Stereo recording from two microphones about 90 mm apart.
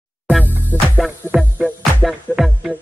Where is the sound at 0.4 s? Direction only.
20° left (ahead or behind).